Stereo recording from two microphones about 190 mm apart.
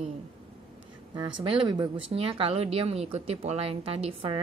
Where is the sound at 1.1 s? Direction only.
25° right (ahead or behind).